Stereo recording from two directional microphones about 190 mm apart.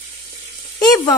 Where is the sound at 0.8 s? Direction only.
20° left (ahead or behind).